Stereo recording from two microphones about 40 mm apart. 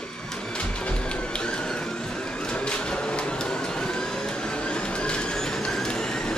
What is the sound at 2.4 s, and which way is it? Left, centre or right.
Vehicle, left.